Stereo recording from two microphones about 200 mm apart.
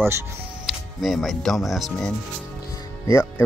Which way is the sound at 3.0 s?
15° left (ahead or behind).